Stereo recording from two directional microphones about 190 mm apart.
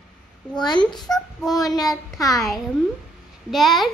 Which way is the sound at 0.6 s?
20° left (ahead or behind).